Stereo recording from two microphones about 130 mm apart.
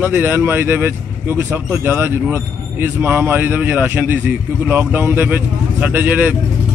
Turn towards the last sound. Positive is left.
turn(degrees=-15)  # may be behind; listen again after turning